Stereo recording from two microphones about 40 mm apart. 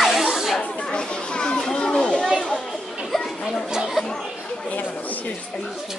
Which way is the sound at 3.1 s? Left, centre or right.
Centre.